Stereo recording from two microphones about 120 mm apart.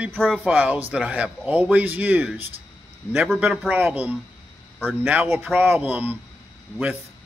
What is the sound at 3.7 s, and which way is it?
Speech, 15° right (ahead or behind).